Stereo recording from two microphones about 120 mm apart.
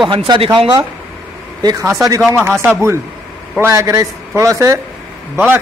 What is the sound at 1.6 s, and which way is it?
Speech, 35° right (ahead or behind).